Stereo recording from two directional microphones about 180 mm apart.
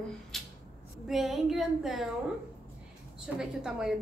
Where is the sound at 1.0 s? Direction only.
Centre (ahead or behind).